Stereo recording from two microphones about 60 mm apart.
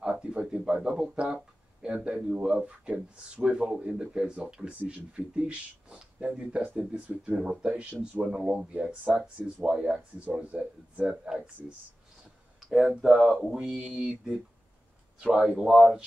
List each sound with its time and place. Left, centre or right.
0.0 s speech: centre
11.1 s speech: centre
12.5 s a sound: centre
13.0 s speech: centre
15.5 s speech: centre